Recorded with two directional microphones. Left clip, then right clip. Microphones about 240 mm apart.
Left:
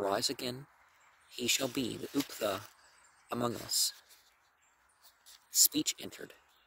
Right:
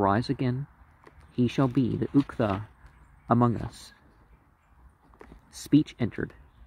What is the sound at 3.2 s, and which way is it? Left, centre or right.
Speech, left.